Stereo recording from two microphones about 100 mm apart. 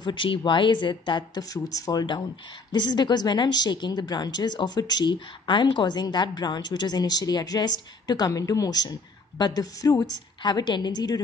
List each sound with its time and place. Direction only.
0.0 s a woman's voice: 55° left (ahead or behind)